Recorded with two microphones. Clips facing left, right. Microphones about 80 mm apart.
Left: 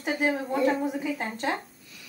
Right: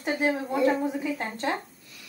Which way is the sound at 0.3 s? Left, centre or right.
Centre.